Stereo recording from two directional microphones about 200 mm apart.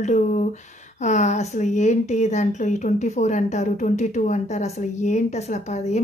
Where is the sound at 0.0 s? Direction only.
40° left (ahead or behind).